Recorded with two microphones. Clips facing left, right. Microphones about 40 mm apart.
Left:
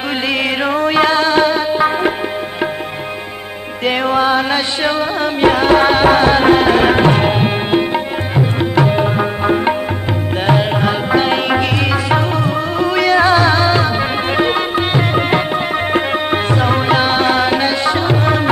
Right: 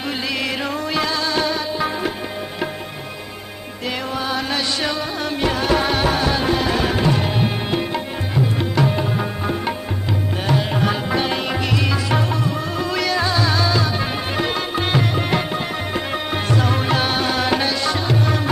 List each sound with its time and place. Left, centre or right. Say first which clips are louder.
0.7 s music: left 9 dB; left
3.8 s music: left 10 dB; left